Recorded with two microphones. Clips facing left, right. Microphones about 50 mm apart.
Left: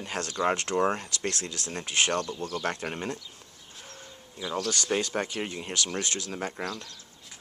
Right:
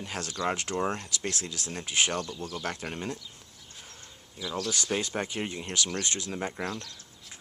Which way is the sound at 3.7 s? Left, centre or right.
Centre.